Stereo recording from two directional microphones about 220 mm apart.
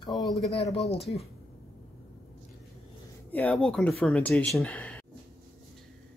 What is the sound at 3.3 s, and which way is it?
Speech, 5° left (ahead or behind).